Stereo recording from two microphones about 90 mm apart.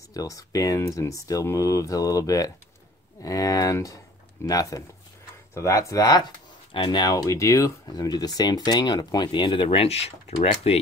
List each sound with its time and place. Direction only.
0.1 s speech: 40° left (ahead or behind)
6.7 s speech: 60° left (ahead or behind)
7.2 s speech: 35° left (ahead or behind); by 10.8 s 90° left